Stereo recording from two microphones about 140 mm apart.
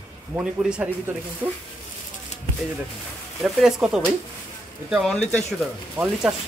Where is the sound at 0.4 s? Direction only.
10° right (ahead or behind).